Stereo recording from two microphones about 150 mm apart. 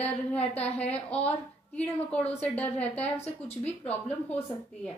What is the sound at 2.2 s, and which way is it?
Speech, 45° left (ahead or behind).